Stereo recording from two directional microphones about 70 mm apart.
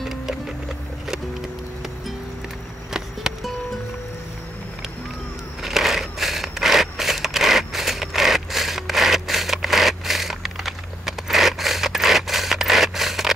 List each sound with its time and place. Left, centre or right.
0.0 s music: centre
2.9 s music: centre
5.6 s crushing: centre